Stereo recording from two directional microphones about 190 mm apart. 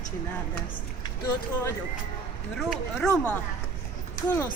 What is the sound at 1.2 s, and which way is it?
Speech, 15° left (ahead or behind).